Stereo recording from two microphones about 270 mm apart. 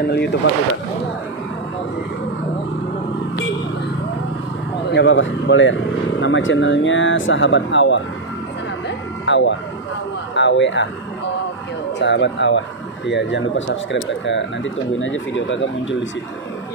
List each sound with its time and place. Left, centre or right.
0.0 s speech: left
4.9 s speech: left
8.8 s vehicle: left
10.3 s speech: left
12.0 s speech: left